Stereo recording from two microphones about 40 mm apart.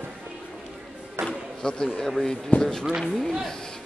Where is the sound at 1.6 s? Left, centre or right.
Left.